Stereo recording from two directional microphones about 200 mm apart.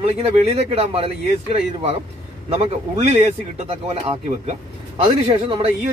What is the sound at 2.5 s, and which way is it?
A man's voice, 30° right (ahead or behind).